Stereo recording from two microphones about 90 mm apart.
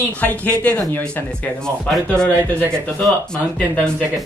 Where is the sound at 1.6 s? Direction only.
10° left (ahead or behind).